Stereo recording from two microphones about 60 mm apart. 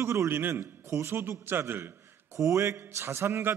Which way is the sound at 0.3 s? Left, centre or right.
Right.